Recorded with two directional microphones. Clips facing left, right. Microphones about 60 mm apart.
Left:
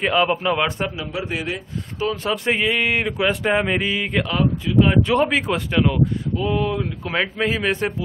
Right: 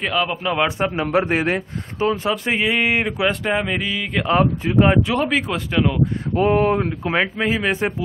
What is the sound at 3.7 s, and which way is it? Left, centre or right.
Speech, centre.